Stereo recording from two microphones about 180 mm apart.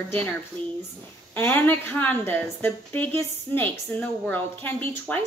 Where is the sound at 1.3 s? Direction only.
10° left (ahead or behind).